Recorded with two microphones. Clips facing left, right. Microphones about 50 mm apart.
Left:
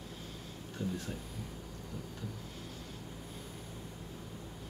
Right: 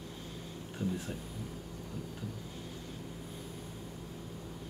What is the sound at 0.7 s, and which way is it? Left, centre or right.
Speech, centre.